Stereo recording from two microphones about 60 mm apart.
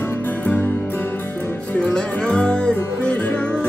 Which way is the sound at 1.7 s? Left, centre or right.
Centre.